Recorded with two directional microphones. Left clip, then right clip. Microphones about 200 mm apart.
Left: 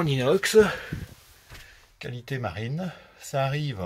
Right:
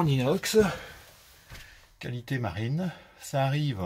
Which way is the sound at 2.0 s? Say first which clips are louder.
Left 2 dB; 15° right (ahead or behind).